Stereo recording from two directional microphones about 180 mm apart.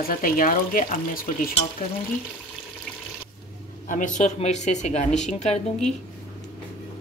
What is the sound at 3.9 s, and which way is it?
Speech, 45° left (ahead or behind).